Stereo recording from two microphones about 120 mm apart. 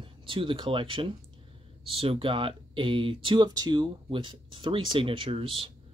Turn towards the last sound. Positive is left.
turn(degrees=-45)  # may be behind; listen again after turning